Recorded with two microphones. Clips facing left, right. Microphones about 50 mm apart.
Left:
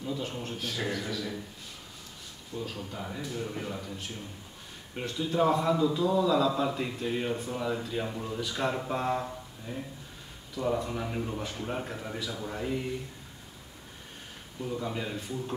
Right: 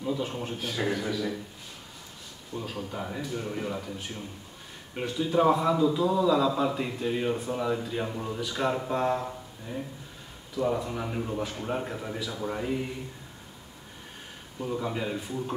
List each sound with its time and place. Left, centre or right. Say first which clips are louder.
0.0 s a man's voice: right 4 dB; centre
2.6 s a man's voice: right 3 dB; centre
4.9 s a man's voice: right 3 dB; centre
14.6 s a man's voice: right 3 dB; centre